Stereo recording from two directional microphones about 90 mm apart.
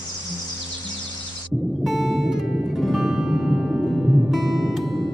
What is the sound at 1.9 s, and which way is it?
Music, centre (ahead or behind).